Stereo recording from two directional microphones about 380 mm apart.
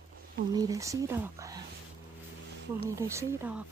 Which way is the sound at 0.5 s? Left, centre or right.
Centre.